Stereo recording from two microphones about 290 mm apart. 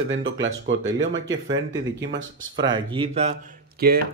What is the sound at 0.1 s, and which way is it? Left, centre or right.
Speech, right.